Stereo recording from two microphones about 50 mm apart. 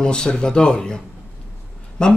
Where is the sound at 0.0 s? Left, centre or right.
Centre.